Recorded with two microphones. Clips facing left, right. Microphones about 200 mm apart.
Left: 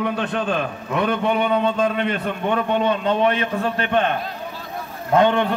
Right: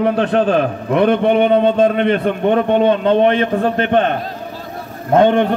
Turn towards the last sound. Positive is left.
turn(degrees=-50)  # may be behind; listen again after turning